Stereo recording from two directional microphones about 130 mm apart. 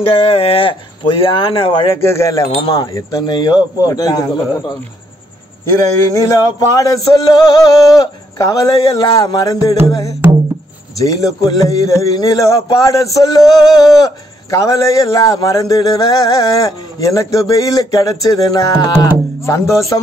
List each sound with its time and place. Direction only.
0.1 s speech: 50° left (ahead or behind)
2.0 s speech: 20° left (ahead or behind)
2.4 s speech: 45° left (ahead or behind); by 4.7 s 30° left (ahead or behind)
6.1 s speech: 25° left (ahead or behind)